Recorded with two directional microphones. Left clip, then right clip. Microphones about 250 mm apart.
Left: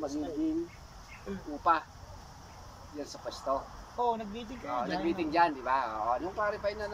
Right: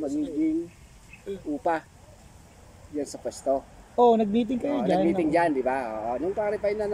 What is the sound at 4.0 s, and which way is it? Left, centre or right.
Speech, right.